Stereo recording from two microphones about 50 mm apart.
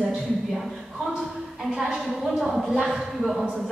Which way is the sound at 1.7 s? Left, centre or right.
Centre.